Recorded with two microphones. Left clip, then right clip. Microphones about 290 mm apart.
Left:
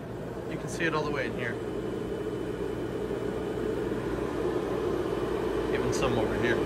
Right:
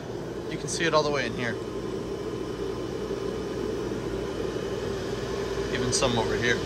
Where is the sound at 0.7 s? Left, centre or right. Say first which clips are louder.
Right 5 dB; centre.